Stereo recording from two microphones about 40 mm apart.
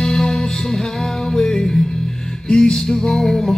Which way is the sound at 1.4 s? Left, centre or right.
Centre.